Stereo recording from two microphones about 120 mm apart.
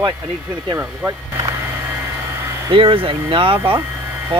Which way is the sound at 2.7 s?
45° right (ahead or behind).